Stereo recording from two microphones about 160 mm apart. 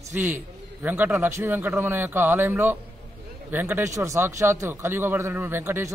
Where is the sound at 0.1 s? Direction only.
10° right (ahead or behind).